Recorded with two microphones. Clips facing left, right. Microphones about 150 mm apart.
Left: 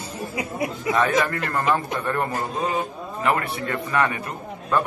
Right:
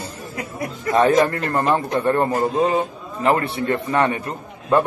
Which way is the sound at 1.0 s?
30° right (ahead or behind).